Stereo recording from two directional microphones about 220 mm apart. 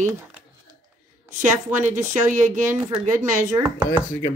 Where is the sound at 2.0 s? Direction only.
35° right (ahead or behind).